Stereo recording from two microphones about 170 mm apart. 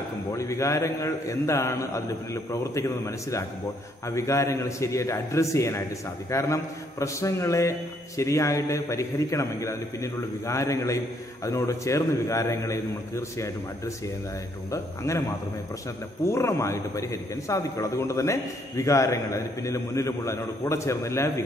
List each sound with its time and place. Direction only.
0.3 s a man's voice: 20° left (ahead or behind)
16.3 s a man's voice: 15° left (ahead or behind)